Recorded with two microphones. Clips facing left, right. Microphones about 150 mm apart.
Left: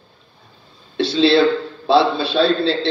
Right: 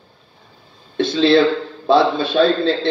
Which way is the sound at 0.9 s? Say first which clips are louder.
Right 1 dB; 50° right (ahead or behind).